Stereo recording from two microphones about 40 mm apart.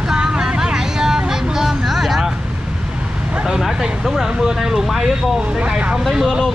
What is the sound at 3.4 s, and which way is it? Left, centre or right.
Speech, centre.